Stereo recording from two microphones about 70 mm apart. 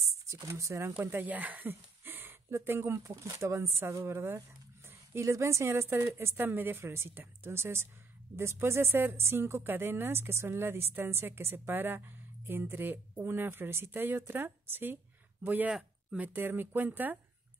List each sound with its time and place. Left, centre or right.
0.3 s speech: right
0.9 s speech: right
3.0 s a woman's voice: right